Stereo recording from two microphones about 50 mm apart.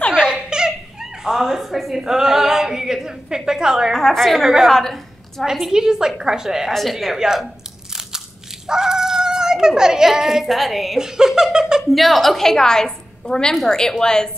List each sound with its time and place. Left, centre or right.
0.1 s giggle: centre
1.2 s a woman's voice: centre
3.9 s a woman's voice: centre
5.4 s a woman's voice: centre
6.7 s a woman's voice: centre
7.2 s a woman's voice: centre
8.6 s speech: centre
11.0 s giggle: centre
11.9 s a woman's voice: centre